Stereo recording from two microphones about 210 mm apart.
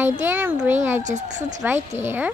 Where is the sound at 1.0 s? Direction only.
35° right (ahead or behind).